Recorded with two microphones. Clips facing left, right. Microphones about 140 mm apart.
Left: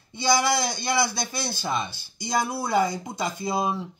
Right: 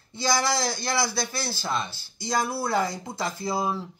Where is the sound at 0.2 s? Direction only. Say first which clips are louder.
Left 2 dB; 20° left (ahead or behind).